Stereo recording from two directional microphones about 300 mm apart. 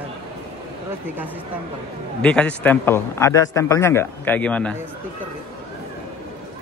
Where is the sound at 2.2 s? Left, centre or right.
Centre.